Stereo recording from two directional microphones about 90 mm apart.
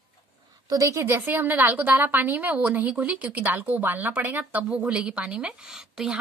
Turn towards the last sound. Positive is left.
turn(degrees=-10)  # may be behind; listen again after turning